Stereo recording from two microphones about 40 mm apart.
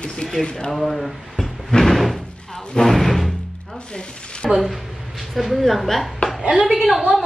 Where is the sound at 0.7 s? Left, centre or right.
Centre.